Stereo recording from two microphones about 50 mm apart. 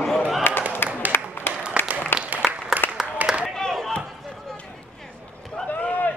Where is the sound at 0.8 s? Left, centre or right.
Left.